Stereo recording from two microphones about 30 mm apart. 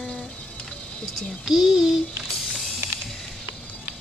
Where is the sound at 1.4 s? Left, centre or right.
Centre.